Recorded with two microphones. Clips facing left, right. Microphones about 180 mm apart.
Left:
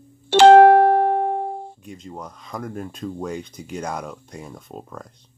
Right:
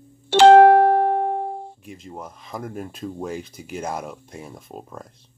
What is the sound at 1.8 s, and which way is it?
Speech, 5° right (ahead or behind).